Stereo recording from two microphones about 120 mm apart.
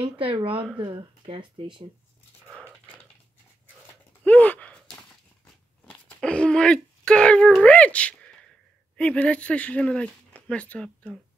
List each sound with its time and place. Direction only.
0.0 s speech: 50° right (ahead or behind)
4.2 s gasp: 10° left (ahead or behind)
5.9 s a sound: 10° left (ahead or behind)
8.9 s speech: 10° left (ahead or behind)